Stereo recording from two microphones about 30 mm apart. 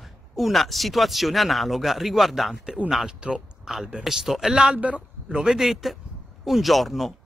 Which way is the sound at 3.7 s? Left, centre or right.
Centre.